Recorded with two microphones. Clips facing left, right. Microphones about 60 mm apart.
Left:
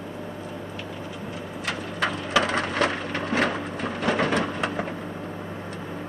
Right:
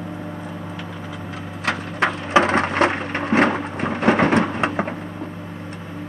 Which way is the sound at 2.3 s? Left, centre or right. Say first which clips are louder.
Right 7 dB; right.